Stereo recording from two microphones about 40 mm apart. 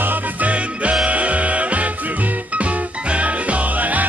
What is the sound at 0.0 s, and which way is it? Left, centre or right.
Music, right.